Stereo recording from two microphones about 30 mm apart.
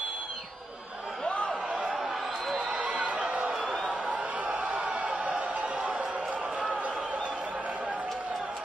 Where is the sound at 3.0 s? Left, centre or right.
Right.